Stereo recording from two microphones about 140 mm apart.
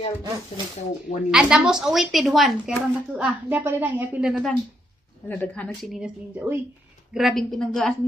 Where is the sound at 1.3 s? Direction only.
5° right (ahead or behind).